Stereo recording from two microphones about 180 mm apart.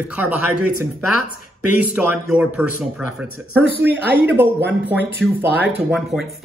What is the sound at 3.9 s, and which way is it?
Speech, 10° right (ahead or behind).